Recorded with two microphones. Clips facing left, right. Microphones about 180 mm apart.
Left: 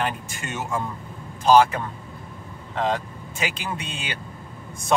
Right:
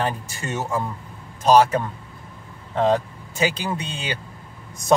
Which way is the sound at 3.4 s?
35° right (ahead or behind).